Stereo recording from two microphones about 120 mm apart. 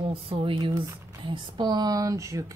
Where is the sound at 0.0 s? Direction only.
50° right (ahead or behind).